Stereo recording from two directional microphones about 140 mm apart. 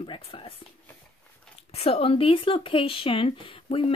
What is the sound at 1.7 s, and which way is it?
Speech, 45° left (ahead or behind).